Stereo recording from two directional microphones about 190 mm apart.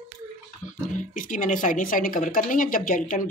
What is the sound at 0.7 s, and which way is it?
Speech, 45° left (ahead or behind).